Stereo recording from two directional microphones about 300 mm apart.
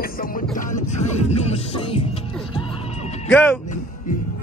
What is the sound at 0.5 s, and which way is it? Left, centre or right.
Music, left.